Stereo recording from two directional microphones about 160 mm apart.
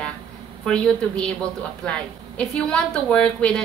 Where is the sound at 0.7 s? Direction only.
5° left (ahead or behind).